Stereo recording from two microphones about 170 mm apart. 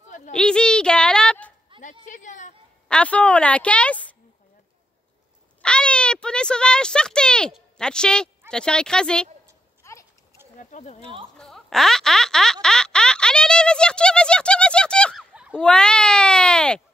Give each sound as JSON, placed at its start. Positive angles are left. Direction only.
{"t": 0.3, "sound": "speech", "side_deg": 5}
{"t": 1.8, "sound": "a woman's voice", "side_deg": 50}
{"t": 2.9, "sound": "a woman's voice", "side_deg": 5}
{"t": 5.6, "sound": "speech", "side_deg": 5}
{"t": 9.8, "sound": "a sound", "side_deg": 15}
{"t": 10.6, "sound": "a woman's voice", "side_deg": 45}
{"t": 11.3, "sound": "speech", "side_deg": 0}
{"t": 12.6, "sound": "a sound", "side_deg": 5}
{"t": 15.5, "sound": "speech", "side_deg": 5}